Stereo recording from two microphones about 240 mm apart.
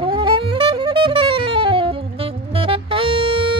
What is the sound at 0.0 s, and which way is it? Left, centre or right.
Saxophone, right.